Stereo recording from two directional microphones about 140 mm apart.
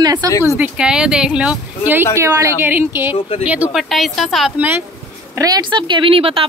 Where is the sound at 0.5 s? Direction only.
5° right (ahead or behind).